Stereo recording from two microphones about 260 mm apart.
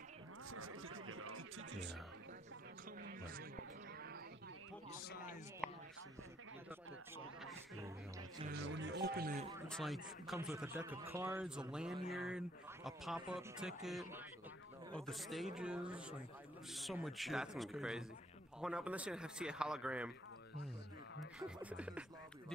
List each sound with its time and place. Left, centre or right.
0.5 s music: right
3.0 s a sound: right
5.0 s a sound: left
5.6 s a sound: centre
7.8 s music: centre
8.5 s music: right
9.7 s a man's voice: centre
10.3 s a man's voice: centre
21.4 s a man's voice: centre